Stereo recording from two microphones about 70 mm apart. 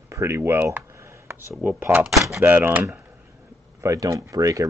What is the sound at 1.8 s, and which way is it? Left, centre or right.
Speech, right.